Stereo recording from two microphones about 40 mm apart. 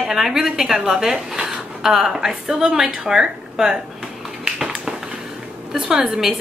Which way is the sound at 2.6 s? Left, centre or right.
Centre.